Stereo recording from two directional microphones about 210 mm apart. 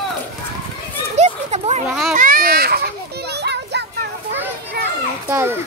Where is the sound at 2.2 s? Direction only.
40° right (ahead or behind).